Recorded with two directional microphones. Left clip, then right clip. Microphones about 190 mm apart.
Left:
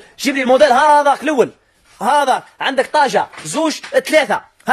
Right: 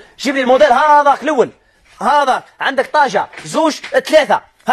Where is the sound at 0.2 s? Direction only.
20° left (ahead or behind).